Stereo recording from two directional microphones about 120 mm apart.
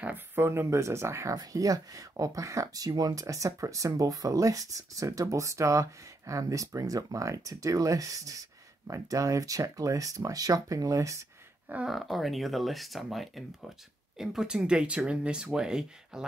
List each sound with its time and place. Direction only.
0.0 s speech: 20° right (ahead or behind)
11.9 s speech: centre (ahead or behind)